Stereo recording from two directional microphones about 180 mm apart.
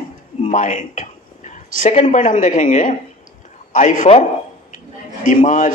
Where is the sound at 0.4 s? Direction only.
40° left (ahead or behind).